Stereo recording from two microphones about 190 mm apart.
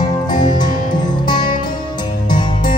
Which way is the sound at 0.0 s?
20° left (ahead or behind).